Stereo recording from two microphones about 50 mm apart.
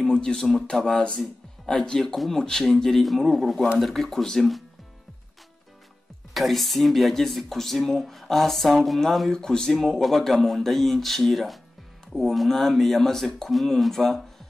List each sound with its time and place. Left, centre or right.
0.0 s speech: centre
0.9 s speech: left; by 4.6 s centre
6.3 s speech: centre
9.3 s speech: centre